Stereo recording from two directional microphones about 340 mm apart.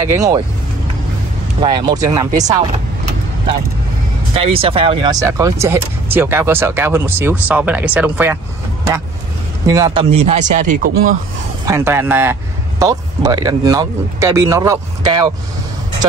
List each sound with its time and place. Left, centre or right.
0.0 s speech: centre
1.6 s speech: centre
4.4 s speech: centre
9.7 s speech: centre
11.6 s speech: centre